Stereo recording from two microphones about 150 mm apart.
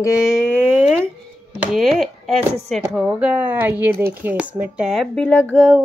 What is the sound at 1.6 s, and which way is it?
Speech, centre (ahead or behind).